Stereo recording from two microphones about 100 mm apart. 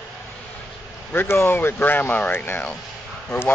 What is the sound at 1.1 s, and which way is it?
Speech, 20° left (ahead or behind).